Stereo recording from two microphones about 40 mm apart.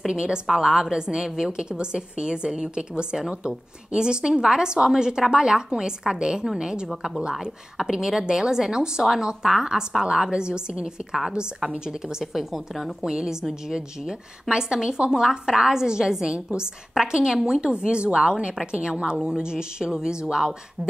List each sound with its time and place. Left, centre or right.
0.0 s a woman's voice: right; by 12.9 s centre
13.0 s a woman's voice: centre
14.5 s a woman's voice: centre